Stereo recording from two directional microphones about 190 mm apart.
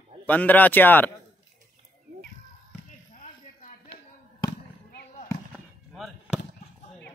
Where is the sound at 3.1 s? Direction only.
40° left (ahead or behind).